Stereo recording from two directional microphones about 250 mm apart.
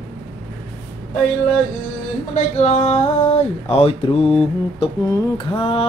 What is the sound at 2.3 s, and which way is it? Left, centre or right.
Mantra, left.